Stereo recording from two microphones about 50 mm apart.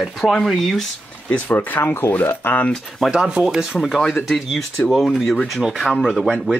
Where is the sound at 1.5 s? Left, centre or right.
Left.